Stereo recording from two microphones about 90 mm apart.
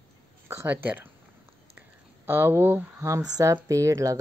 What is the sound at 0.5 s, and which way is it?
Speech, 25° right (ahead or behind).